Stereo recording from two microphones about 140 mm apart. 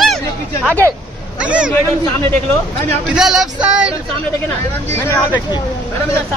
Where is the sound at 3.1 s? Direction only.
5° right (ahead or behind).